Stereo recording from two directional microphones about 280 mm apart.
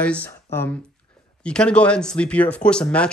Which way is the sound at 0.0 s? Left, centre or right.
Centre.